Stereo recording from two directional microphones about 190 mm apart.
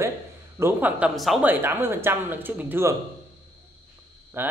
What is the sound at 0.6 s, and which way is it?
A man's voice, 10° right (ahead or behind).